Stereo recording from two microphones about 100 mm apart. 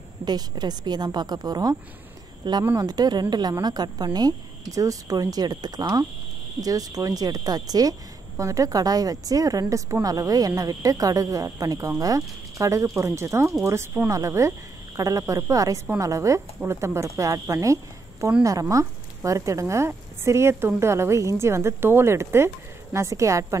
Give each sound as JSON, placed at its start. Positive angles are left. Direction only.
{"t": 0.2, "sound": "a woman's voice", "side_deg": -45}